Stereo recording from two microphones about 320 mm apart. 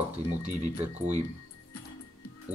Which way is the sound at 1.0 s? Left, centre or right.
Right.